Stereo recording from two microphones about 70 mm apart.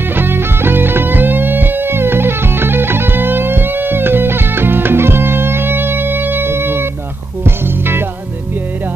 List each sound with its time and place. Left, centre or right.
0.1 s music: right